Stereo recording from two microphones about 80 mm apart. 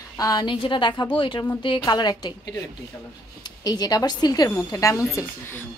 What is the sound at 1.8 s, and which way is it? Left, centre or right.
Speech, left.